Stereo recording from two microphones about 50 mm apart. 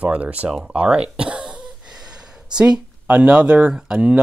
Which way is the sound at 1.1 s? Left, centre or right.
Right.